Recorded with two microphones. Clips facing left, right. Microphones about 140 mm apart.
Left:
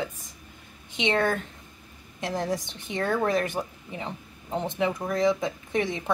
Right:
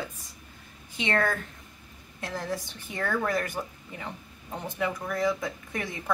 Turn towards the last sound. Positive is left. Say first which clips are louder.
# left 7 dB
turn(degrees=20)  # may be behind; listen again after turning